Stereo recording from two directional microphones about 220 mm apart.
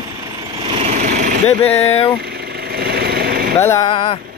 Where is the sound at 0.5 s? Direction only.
25° right (ahead or behind).